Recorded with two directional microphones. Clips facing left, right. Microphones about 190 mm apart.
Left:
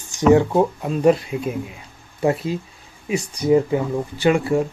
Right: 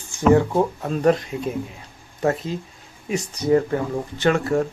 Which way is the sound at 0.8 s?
5° left (ahead or behind).